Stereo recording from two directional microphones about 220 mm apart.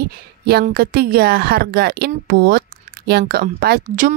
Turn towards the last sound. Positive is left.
turn(degrees=-35)  # may be behind; listen again after turning